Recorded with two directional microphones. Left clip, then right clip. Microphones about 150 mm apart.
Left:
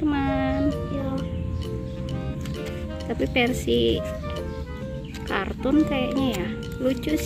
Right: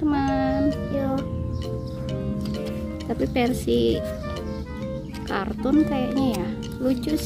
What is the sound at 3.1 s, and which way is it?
Speech, 5° right (ahead or behind).